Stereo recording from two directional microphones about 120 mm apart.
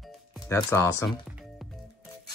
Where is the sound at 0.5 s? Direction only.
25° left (ahead or behind).